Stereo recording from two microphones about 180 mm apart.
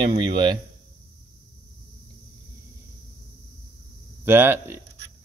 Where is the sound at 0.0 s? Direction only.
25° right (ahead or behind).